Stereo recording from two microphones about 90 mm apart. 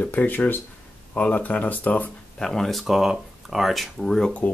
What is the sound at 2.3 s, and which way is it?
Speech, 5° left (ahead or behind).